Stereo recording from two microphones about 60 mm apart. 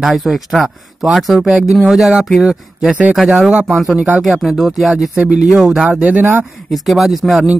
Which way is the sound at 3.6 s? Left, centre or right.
Centre.